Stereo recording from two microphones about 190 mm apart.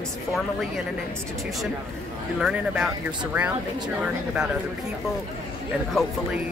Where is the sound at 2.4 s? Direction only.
5° right (ahead or behind).